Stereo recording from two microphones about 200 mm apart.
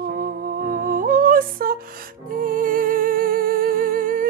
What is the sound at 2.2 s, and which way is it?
Music, 45° right (ahead or behind).